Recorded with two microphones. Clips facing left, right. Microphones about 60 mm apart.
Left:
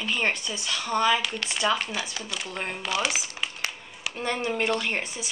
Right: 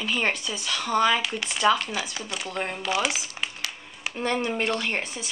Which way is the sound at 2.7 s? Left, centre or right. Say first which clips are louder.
Right 1 dB; right.